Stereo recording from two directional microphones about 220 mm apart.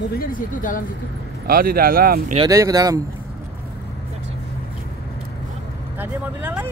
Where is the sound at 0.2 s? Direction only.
40° left (ahead or behind).